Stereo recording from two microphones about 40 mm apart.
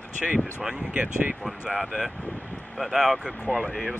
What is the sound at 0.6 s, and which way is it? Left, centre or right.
Speech, right.